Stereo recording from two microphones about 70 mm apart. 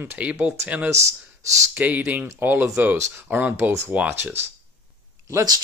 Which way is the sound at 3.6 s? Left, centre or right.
Right.